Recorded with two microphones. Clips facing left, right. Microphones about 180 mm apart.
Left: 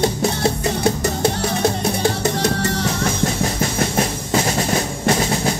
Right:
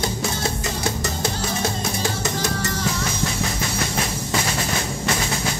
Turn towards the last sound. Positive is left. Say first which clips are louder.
# left 5 dB
turn(degrees=45)  # may be behind; listen again after turning